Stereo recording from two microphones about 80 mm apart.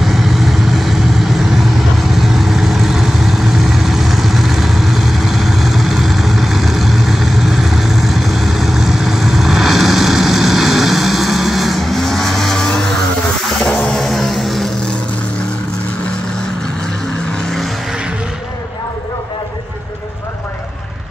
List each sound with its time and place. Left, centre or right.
0.0 s vehicle: centre
13.7 s a sound: centre
13.9 s vehicle: centre